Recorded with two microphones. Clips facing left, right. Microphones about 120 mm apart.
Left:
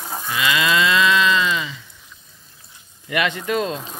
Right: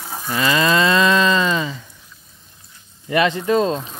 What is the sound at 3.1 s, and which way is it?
Moo, 30° right (ahead or behind).